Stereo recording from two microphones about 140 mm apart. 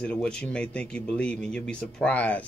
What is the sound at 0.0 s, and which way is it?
A man's voice, 5° left (ahead or behind).